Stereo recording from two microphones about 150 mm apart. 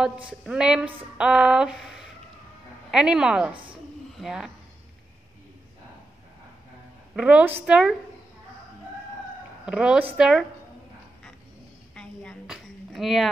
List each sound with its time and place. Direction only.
0.0 s a woman's voice: 5° right (ahead or behind)
7.2 s a woman's voice: 10° right (ahead or behind)
9.7 s a woman's voice: 5° right (ahead or behind)
11.9 s a sound: 5° left (ahead or behind)